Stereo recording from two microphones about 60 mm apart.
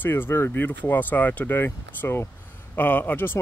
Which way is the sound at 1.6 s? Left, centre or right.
Left.